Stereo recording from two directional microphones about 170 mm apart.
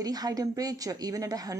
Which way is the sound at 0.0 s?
20° right (ahead or behind).